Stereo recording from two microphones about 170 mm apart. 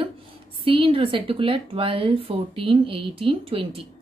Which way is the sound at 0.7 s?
30° right (ahead or behind).